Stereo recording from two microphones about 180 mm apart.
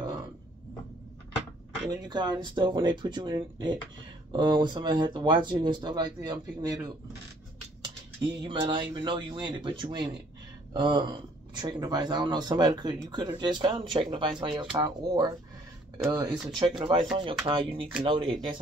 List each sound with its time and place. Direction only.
2.0 s speech: 25° right (ahead or behind)
7.8 s speech: 25° right (ahead or behind)